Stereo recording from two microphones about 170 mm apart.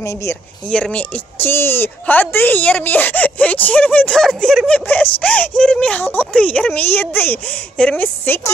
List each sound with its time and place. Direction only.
0.0 s a woman's voice: 15° left (ahead or behind)
0.7 s a woman's voice: 5° left (ahead or behind)